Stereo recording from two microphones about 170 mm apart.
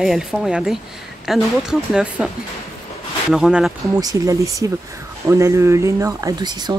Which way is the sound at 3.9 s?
20° right (ahead or behind).